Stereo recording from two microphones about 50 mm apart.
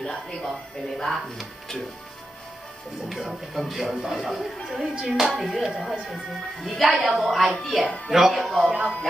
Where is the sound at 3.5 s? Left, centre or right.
Centre.